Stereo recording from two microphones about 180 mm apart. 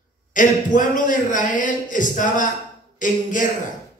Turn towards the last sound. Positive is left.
turn(degrees=45)  # may be behind; listen again after turning